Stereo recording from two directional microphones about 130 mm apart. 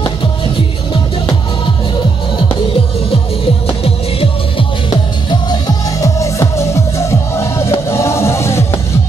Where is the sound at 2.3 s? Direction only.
40° left (ahead or behind).